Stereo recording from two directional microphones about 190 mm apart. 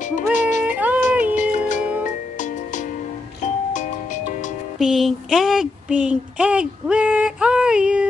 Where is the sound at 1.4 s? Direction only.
40° left (ahead or behind).